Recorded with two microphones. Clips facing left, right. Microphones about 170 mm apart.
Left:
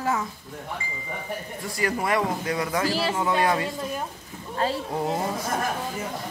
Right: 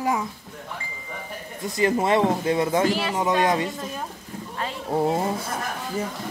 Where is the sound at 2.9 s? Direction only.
30° left (ahead or behind).